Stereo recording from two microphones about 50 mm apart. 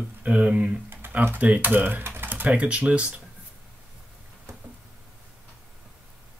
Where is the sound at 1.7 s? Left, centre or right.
Right.